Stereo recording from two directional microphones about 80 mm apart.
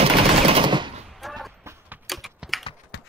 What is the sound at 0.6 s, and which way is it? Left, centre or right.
Machine gun, right.